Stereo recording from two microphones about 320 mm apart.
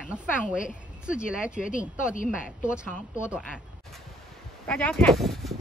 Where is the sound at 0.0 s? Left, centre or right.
Centre.